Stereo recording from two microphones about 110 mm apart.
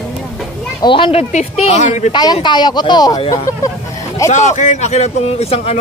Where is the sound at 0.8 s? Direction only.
50° left (ahead or behind); by 2.1 s 90° left.